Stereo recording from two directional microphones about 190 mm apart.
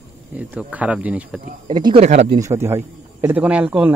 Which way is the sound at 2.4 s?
15° right (ahead or behind).